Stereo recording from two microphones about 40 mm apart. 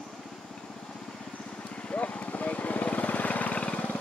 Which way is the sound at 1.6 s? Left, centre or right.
Left.